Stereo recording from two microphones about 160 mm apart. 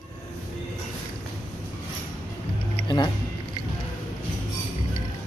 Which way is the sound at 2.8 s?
25° left (ahead or behind).